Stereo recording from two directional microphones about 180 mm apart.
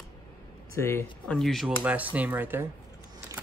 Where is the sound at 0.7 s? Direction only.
15° left (ahead or behind); by 2.6 s 10° right (ahead or behind).